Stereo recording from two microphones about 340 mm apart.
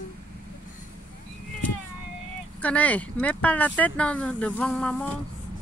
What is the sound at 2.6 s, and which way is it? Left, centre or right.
Speech, centre.